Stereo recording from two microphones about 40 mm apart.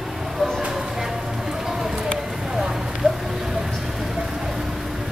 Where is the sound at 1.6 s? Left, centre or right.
Centre.